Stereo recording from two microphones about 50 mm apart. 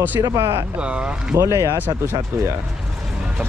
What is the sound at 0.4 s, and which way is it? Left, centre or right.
Speech, right.